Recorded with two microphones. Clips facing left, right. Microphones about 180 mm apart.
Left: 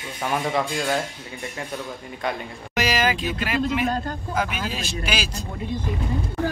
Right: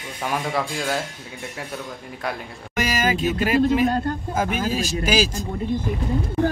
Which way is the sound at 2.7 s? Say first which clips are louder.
Even; 45° right (ahead or behind).